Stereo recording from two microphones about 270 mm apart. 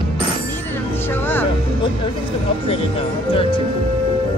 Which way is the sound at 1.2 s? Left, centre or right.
Centre.